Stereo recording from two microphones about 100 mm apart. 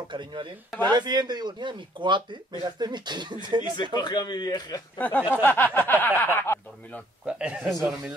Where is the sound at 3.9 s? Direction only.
45° left (ahead or behind).